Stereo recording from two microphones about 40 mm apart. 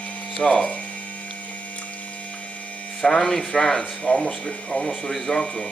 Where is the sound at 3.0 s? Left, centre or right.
Centre.